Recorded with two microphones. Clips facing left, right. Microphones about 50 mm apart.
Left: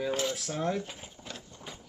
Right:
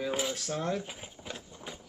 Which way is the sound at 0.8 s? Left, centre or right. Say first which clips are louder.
Left 1 dB; centre.